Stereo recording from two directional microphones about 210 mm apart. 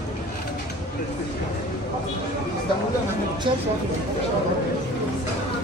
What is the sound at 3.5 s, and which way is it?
Speech, 25° right (ahead or behind).